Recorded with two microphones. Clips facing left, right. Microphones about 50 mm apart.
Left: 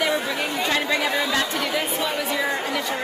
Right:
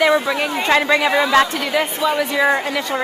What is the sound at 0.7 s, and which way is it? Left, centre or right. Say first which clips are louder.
Speech: right 9 dB; right.